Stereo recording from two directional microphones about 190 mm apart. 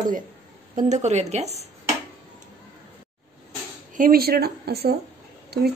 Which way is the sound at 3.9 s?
50° right (ahead or behind).